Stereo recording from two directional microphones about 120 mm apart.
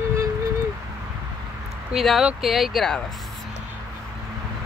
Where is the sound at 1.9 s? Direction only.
Centre (ahead or behind).